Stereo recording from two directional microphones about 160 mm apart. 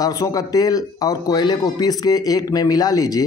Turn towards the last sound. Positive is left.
turn(degrees=25)  # may be behind; listen again after turning